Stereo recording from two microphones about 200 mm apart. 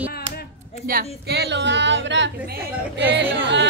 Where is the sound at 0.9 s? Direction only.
50° right (ahead or behind).